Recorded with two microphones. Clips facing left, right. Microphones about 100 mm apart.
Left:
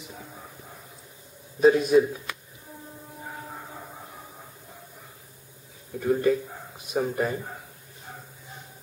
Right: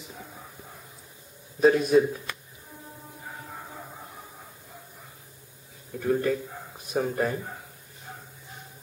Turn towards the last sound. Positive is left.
turn(degrees=5)  # may be behind; listen again after turning